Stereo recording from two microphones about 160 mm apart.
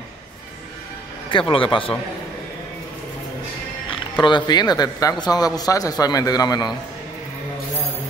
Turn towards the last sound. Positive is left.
turn(degrees=25)  # may be behind; listen again after turning